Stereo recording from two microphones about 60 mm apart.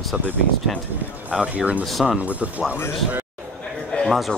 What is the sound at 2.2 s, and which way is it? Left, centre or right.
Speech, right.